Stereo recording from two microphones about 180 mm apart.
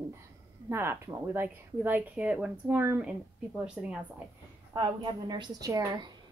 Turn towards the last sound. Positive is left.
turn(degrees=-20)  # may be behind; listen again after turning